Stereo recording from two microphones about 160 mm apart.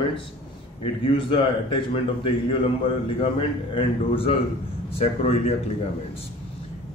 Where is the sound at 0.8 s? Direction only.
30° left (ahead or behind).